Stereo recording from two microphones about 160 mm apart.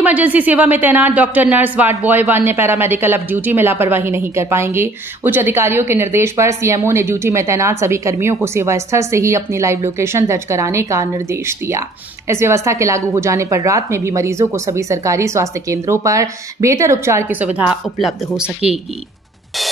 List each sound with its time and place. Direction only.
0.0 s a woman's voice: 10° right (ahead or behind)